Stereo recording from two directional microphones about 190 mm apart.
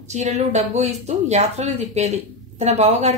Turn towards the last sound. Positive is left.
turn(degrees=-35)  # may be behind; listen again after turning